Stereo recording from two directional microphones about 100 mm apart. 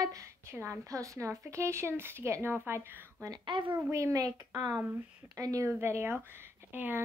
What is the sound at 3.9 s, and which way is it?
Speech, 35° right (ahead or behind).